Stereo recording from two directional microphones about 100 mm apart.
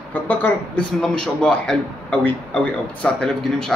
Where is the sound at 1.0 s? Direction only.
5° left (ahead or behind).